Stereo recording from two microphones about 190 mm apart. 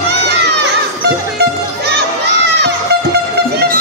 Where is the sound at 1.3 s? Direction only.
60° right (ahead or behind).